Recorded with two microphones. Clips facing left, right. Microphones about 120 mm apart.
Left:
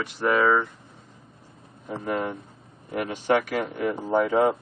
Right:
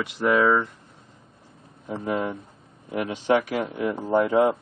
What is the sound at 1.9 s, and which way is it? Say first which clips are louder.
Speech: right 1 dB; 5° right (ahead or behind).